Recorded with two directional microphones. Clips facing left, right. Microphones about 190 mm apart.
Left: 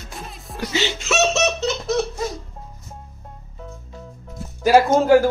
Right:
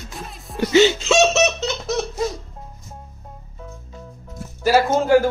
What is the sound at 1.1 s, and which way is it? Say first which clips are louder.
Laughter: right 4 dB; 15° right (ahead or behind).